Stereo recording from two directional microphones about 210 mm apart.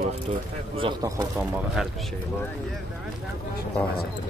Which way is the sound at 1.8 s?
Centre (ahead or behind).